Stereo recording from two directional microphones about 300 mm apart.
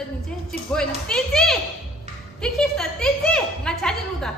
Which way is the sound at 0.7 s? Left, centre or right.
Centre.